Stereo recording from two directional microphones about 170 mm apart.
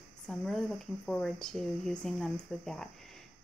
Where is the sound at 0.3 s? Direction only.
Centre (ahead or behind).